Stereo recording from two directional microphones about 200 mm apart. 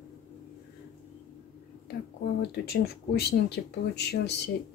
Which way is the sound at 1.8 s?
50° left (ahead or behind).